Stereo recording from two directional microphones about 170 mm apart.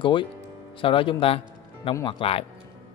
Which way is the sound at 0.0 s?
30° left (ahead or behind).